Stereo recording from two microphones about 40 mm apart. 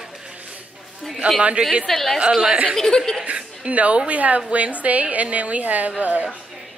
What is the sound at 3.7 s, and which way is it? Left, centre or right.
A woman's voice, right.